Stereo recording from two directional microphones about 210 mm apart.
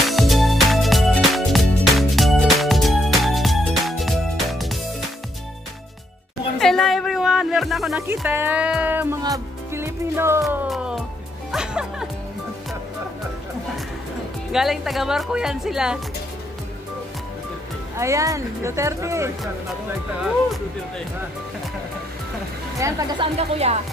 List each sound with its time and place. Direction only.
0.0 s music: centre (ahead or behind)
6.6 s music: centre (ahead or behind)
8.1 s speech: 10° right (ahead or behind)
10.4 s music: 5° right (ahead or behind)
14.5 s speech: centre (ahead or behind)
17.9 s speech: 15° right (ahead or behind)
22.8 s speech: 15° right (ahead or behind)